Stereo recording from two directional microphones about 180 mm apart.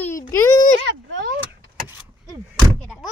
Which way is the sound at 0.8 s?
90° right.